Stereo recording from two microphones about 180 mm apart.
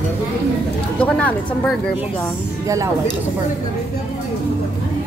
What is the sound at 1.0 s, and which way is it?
Speech, 5° left (ahead or behind).